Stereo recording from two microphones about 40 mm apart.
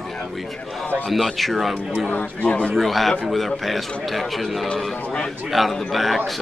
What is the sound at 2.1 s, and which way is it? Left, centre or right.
Speech, left.